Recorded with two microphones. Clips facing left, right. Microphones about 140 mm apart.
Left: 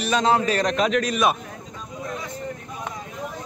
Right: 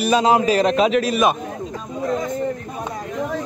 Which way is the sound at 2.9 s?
65° right (ahead or behind).